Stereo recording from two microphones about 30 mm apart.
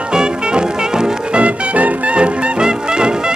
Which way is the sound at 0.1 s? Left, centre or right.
Right.